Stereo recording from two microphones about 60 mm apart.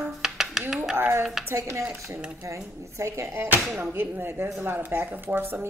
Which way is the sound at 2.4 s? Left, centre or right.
Right.